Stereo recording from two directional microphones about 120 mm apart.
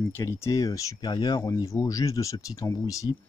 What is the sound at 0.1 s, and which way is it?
Speech, 20° left (ahead or behind).